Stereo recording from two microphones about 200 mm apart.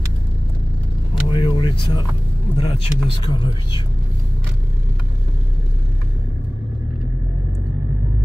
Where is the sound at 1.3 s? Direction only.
25° left (ahead or behind).